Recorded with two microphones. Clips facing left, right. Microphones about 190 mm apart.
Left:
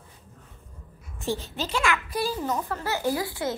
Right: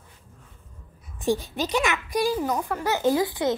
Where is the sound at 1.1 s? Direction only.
15° right (ahead or behind).